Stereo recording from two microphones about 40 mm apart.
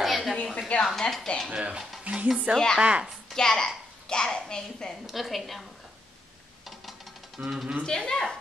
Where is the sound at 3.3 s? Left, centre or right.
Centre.